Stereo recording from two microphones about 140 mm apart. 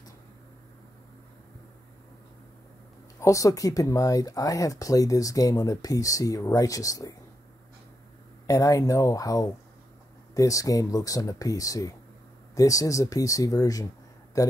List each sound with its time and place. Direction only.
3.2 s speech: 25° left (ahead or behind)
8.5 s speech: 25° left (ahead or behind)